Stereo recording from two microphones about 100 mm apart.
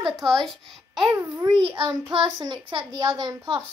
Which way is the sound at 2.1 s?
50° right (ahead or behind).